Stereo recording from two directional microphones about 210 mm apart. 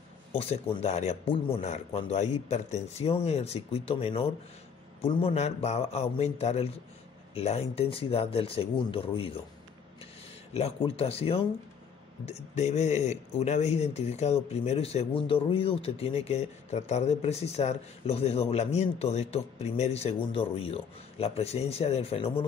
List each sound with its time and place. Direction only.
0.3 s a man's voice: 25° left (ahead or behind)
10.5 s speech: 30° left (ahead or behind)